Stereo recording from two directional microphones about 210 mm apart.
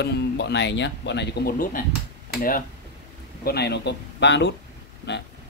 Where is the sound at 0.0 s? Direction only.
55° left (ahead or behind).